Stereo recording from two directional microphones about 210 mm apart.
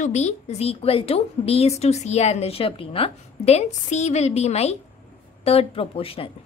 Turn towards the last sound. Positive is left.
turn(degrees=25)  # may be behind; listen again after turning